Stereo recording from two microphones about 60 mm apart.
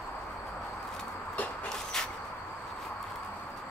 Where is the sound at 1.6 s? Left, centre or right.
Centre.